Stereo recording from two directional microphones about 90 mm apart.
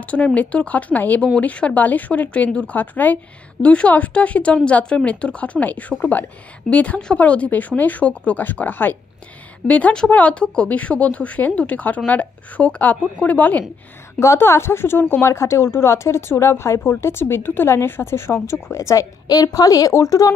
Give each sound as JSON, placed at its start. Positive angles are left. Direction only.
{"t": 0.1, "sound": "speech", "side_deg": 15}
{"t": 14.2, "sound": "speech", "side_deg": 30}